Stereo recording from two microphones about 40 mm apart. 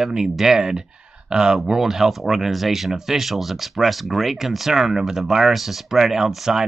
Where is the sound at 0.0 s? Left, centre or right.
Centre.